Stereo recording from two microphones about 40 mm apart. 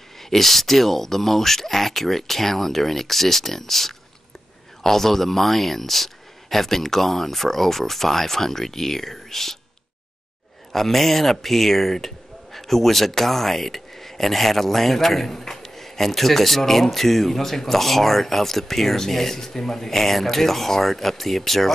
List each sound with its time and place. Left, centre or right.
0.2 s speech: centre
10.7 s speech: centre